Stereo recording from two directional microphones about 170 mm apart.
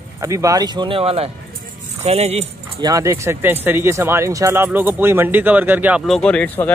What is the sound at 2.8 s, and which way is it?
Speech, 20° right (ahead or behind).